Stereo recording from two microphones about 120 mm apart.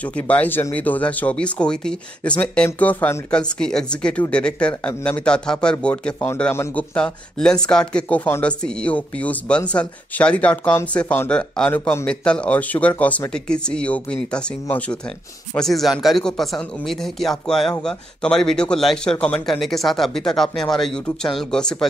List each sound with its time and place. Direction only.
0.0 s speech: 10° left (ahead or behind)
6.1 s a man's voice: 20° left (ahead or behind)